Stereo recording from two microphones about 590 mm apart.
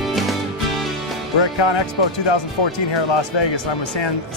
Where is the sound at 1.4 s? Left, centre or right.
Left.